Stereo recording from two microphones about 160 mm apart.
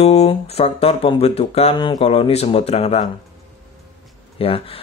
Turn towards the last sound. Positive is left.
turn(degrees=35)  # may be behind; listen again after turning